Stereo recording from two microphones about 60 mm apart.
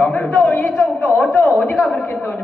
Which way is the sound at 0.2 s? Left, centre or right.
Centre.